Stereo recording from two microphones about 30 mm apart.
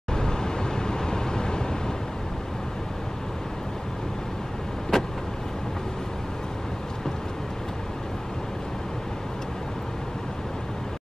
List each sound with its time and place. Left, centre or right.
0.1 s vehicle: left
4.9 s vehicle: centre